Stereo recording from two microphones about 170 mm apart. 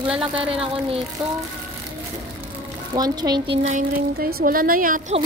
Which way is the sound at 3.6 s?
45° right (ahead or behind).